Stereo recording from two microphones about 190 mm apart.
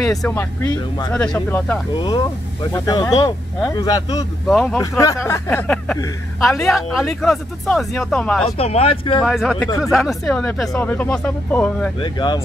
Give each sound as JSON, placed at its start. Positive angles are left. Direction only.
{"t": 0.0, "sound": "speech", "side_deg": 0}
{"t": 2.0, "sound": "speech", "side_deg": 25}
{"t": 4.5, "sound": "speech", "side_deg": 0}
{"t": 4.7, "sound": "speech", "side_deg": 15}
{"t": 8.5, "sound": "speech", "side_deg": 35}
{"t": 9.2, "sound": "speech", "side_deg": 0}
{"t": 12.0, "sound": "speech", "side_deg": 25}